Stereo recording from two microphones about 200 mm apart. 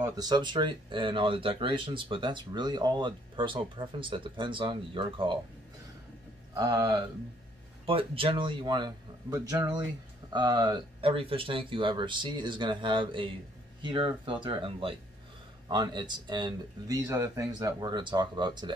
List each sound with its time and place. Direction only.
0.0 s speech: 20° right (ahead or behind)
6.5 s speech: 20° right (ahead or behind)